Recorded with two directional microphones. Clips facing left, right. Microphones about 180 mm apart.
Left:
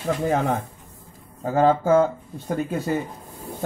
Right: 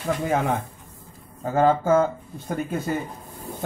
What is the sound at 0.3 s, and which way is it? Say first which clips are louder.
Speech: left 1 dB; 35° left (ahead or behind).